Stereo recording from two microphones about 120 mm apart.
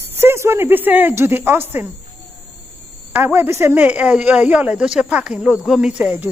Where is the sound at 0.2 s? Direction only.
20° right (ahead or behind).